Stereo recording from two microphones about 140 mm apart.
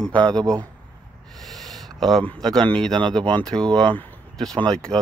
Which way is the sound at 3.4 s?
5° left (ahead or behind).